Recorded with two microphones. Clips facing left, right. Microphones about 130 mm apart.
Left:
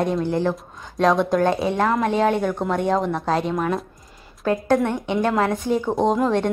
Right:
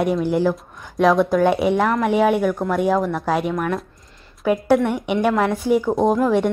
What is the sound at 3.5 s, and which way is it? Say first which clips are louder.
Speech: even; 20° left (ahead or behind).